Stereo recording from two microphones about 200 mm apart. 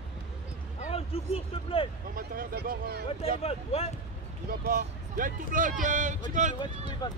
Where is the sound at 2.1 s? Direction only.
45° right (ahead or behind).